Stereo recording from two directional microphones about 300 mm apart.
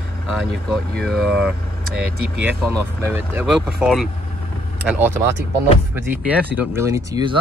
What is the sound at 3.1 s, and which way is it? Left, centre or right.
Speech, centre.